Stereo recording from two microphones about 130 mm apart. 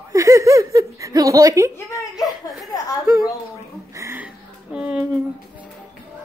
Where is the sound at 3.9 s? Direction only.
25° right (ahead or behind).